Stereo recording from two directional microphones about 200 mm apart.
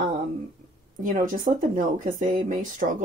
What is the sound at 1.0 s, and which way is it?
Speech, 40° right (ahead or behind).